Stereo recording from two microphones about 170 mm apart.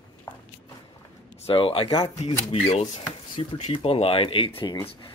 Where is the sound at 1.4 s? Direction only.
35° left (ahead or behind).